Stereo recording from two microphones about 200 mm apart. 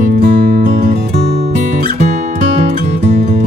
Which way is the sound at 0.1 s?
50° right (ahead or behind).